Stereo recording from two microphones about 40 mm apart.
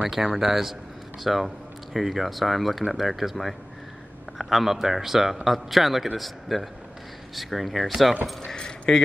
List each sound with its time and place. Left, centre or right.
0.3 s a man's voice: centre
8.5 s keys jangling: centre